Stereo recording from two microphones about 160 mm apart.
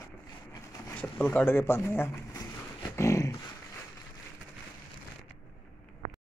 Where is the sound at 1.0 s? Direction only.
10° left (ahead or behind).